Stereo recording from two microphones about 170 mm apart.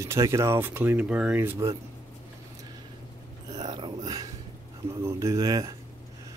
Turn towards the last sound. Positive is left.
turn(degrees=-20)  # may be behind; listen again after turning